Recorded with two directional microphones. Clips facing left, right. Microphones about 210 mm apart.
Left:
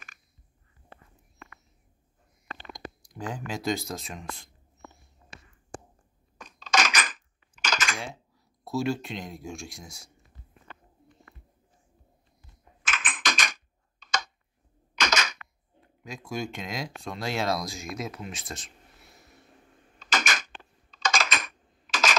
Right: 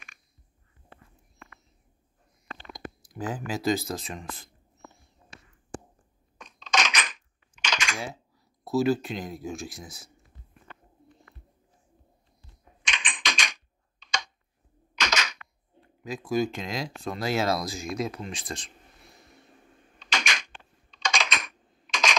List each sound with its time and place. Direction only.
3.1 s speech: 5° right (ahead or behind)
6.3 s a sound: centre (ahead or behind)
7.5 s typing: 5° left (ahead or behind)
8.6 s speech: centre (ahead or behind)
12.8 s typing: 5° left (ahead or behind)
15.0 s a sound: 50° left (ahead or behind)
16.0 s speech: centre (ahead or behind)
20.3 s a sound: 45° left (ahead or behind)
21.0 s typing: 5° left (ahead or behind)